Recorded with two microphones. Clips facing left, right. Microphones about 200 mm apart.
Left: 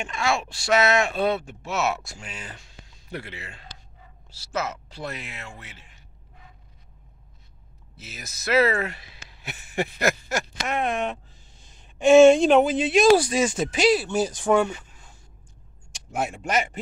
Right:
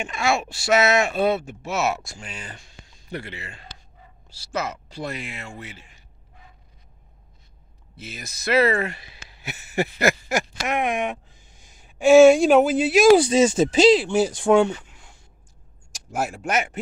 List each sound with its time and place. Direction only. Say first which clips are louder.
0.0 s speech: right 2 dB; 5° right (ahead or behind)
8.0 s speech: right 4 dB; 5° left (ahead or behind)
13.3 s speech: right 6 dB; 25° right (ahead or behind)
14.0 s speech: right 4 dB; 10° right (ahead or behind)
14.9 s a sound: right 1 dB; 80° right
15.9 s speech: right 1 dB; 5° right (ahead or behind)